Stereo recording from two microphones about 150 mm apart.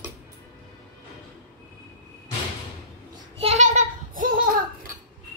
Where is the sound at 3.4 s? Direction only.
45° right (ahead or behind).